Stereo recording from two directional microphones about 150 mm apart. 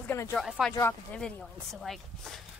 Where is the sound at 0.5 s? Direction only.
Centre (ahead or behind).